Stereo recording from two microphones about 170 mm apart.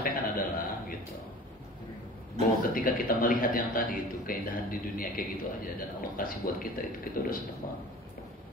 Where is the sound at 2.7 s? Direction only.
55° left (ahead or behind).